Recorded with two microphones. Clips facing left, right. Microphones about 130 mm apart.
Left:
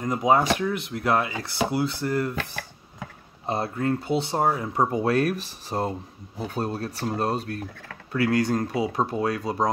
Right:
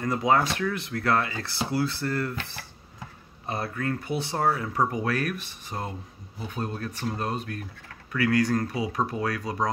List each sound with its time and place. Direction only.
0.0 s speech: 15° left (ahead or behind)
3.4 s speech: 25° left (ahead or behind)